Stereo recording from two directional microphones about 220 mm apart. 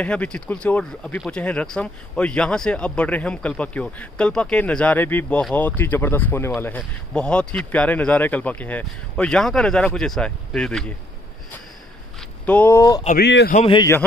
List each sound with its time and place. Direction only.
0.0 s speech: 5° left (ahead or behind)
12.4 s speech: 5° left (ahead or behind)
13.2 s a man's voice: 50° left (ahead or behind)
13.5 s a man's voice: 25° left (ahead or behind)